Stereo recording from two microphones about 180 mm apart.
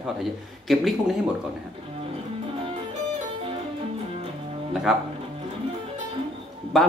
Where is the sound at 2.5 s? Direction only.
30° right (ahead or behind).